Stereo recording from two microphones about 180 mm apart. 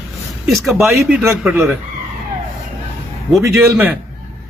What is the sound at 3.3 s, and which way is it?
Speech, 5° right (ahead or behind).